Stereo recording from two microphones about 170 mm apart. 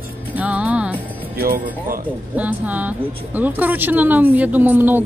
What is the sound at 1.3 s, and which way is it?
Speech, 60° right (ahead or behind).